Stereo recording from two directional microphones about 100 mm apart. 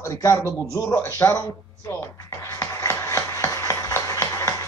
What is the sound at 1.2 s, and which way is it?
Speech, 30° left (ahead or behind).